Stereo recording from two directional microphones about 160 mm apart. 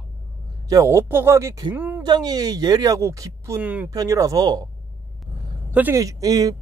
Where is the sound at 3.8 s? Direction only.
20° right (ahead or behind).